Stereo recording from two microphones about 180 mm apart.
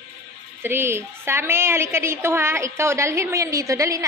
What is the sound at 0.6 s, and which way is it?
A woman's voice, 15° right (ahead or behind).